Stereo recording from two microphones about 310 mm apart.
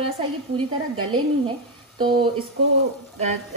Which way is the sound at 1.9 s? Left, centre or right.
Centre.